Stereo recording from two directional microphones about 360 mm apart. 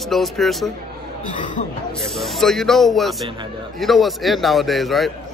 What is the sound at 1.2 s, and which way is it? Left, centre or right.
Speech, left.